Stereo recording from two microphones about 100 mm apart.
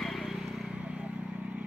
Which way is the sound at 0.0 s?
Centre (ahead or behind).